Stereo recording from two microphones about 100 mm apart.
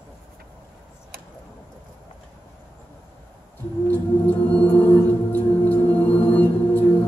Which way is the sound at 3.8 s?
20° left (ahead or behind).